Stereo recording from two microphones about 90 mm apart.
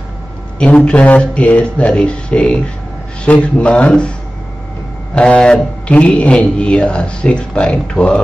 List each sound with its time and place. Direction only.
0.6 s speech: 10° left (ahead or behind)
5.1 s speech: 10° left (ahead or behind)